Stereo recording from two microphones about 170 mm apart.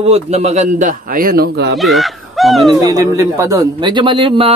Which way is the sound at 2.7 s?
20° right (ahead or behind).